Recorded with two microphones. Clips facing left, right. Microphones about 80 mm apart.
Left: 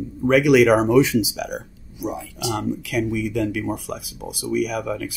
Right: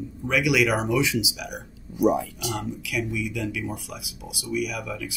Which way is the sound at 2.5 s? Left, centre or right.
Left.